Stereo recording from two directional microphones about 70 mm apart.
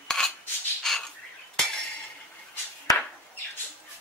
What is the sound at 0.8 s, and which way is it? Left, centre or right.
Bird, centre.